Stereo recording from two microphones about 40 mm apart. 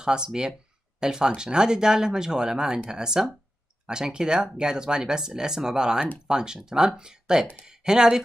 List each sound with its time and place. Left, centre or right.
0.0 s speech: centre